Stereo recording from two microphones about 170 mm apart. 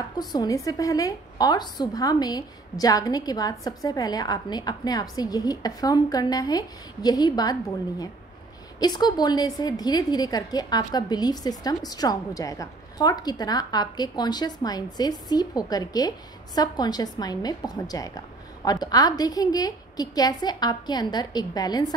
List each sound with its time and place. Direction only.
0.2 s a woman's voice: 25° left (ahead or behind)
8.7 s a woman's voice: 25° left (ahead or behind)